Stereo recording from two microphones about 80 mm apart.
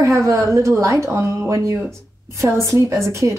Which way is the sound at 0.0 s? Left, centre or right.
Right.